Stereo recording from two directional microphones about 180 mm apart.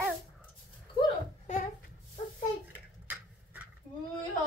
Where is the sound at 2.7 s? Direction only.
10° right (ahead or behind).